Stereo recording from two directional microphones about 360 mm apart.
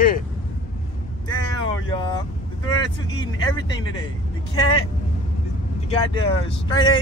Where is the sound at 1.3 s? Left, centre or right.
Centre.